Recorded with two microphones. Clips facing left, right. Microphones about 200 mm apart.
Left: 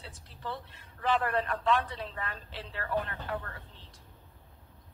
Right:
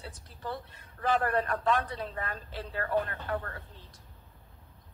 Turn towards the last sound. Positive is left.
turn(degrees=-40)  # may be behind; listen again after turning